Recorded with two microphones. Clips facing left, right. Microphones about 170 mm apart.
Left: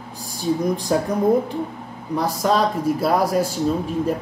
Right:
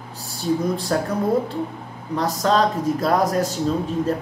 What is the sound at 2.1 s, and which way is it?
Speech, 10° left (ahead or behind).